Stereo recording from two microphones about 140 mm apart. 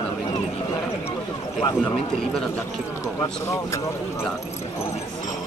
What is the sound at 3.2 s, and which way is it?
Speech, 20° left (ahead or behind).